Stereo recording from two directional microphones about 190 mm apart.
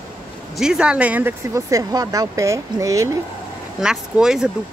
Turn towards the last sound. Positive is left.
turn(degrees=-5)  # may be behind; listen again after turning